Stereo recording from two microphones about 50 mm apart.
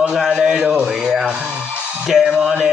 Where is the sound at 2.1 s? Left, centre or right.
Centre.